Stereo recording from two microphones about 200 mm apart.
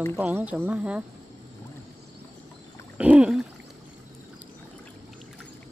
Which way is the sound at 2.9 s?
5° right (ahead or behind).